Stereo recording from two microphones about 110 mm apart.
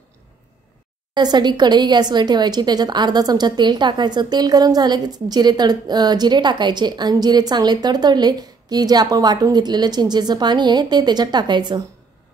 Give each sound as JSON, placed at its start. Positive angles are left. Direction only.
{"t": 1.1, "sound": "speech", "side_deg": -40}